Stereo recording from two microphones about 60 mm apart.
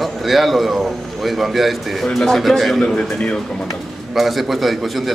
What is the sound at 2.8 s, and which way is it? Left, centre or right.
Speech, centre.